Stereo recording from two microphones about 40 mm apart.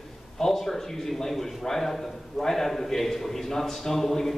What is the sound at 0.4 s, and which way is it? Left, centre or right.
A man's voice, centre.